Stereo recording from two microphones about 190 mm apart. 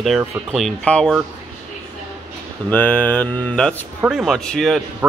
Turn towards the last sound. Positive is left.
turn(degrees=0)  # may be behind; listen again after turning